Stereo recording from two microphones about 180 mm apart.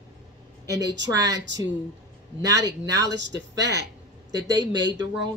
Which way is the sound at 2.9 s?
80° right.